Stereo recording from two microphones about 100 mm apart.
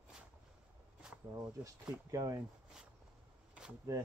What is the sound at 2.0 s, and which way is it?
Speech, 35° right (ahead or behind).